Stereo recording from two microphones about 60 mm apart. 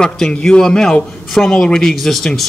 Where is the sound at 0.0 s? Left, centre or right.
Centre.